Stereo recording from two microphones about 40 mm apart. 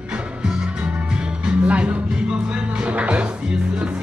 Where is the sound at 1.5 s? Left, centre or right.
Right.